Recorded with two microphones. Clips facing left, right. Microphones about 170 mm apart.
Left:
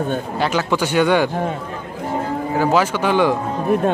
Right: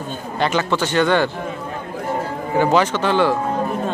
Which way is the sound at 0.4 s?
5° left (ahead or behind).